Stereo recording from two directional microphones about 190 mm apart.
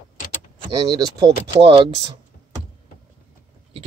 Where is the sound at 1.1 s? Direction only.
20° right (ahead or behind).